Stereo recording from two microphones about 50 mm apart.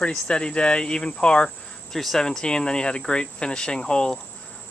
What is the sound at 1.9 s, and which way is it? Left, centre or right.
Speech, centre.